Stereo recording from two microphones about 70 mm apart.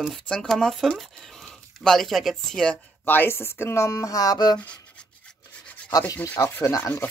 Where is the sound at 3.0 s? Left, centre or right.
Left.